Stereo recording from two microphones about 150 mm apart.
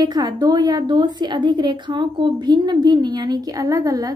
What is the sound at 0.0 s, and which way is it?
A woman's voice, 25° right (ahead or behind).